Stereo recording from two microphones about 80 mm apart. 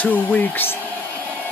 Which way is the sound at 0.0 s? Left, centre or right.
Left.